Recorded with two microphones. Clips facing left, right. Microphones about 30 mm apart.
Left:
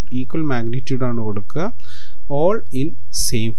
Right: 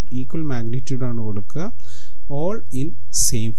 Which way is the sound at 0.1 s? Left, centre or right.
Left.